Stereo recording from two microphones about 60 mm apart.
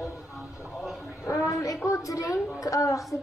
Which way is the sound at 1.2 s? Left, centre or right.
Left.